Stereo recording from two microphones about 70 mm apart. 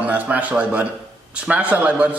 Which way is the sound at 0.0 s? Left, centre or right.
Right.